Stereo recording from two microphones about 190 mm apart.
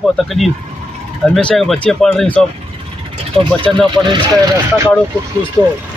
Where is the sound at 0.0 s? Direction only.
Centre (ahead or behind).